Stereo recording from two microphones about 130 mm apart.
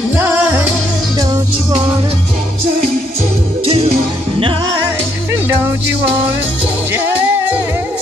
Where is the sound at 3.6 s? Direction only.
50° right (ahead or behind).